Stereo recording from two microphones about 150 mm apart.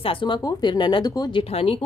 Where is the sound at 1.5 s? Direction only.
40° left (ahead or behind).